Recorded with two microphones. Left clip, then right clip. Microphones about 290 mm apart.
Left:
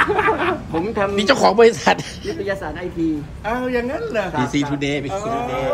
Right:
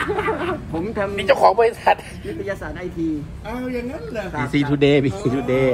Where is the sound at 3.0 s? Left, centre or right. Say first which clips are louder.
Left 2 dB; centre; by 5.7 s right.